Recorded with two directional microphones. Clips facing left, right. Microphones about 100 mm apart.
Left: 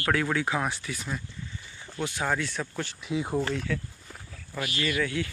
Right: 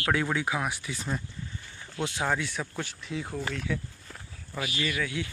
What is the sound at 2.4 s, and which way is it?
Speech, 10° right (ahead or behind).